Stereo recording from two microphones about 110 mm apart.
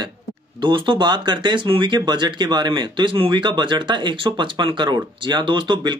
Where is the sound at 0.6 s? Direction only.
50° right (ahead or behind).